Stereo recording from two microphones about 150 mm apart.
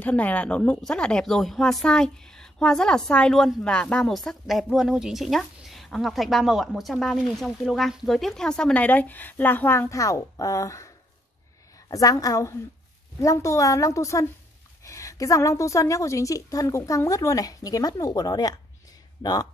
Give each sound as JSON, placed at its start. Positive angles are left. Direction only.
{"t": 0.0, "sound": "speech", "side_deg": 10}
{"t": 11.9, "sound": "a woman's voice", "side_deg": 25}